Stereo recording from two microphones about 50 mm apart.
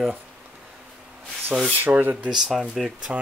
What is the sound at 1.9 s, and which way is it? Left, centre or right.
Speech, right.